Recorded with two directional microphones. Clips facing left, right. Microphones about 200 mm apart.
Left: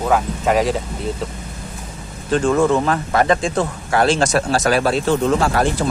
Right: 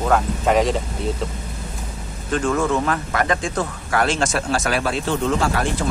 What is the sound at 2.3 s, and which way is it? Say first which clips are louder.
A man's voice: left 5 dB; 30° left (ahead or behind).